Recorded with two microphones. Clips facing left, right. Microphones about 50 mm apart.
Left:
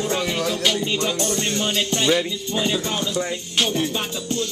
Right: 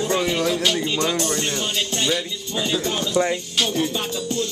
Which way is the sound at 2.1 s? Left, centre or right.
Centre.